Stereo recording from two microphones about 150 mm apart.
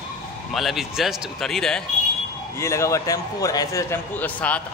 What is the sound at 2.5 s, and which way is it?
A man's voice, 20° left (ahead or behind).